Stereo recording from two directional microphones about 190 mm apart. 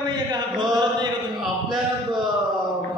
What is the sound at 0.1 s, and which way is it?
Chant, 20° right (ahead or behind).